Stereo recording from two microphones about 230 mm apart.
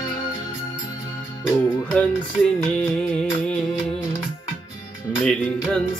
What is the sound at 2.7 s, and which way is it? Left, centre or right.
Music, centre.